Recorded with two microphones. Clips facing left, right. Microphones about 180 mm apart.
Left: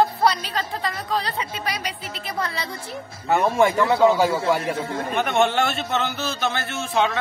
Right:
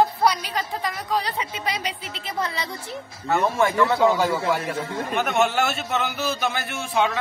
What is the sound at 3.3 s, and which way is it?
Speech, 15° left (ahead or behind).